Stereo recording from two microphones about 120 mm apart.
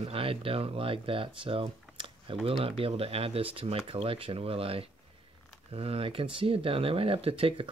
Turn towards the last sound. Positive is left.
turn(degrees=-50)  # may be behind; listen again after turning